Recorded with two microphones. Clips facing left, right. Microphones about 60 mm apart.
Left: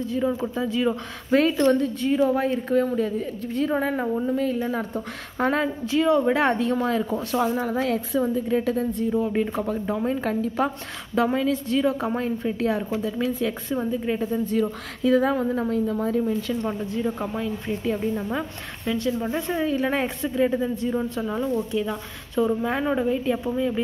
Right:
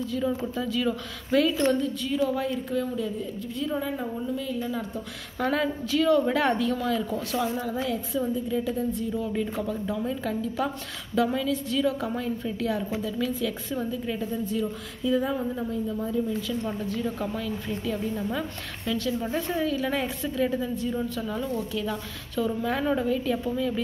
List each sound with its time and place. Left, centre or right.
0.0 s a woman's voice: left
1.3 s a woman's voice: left
9.0 s a woman's voice: left
14.3 s a woman's voice: left
16.6 s a woman's voice: left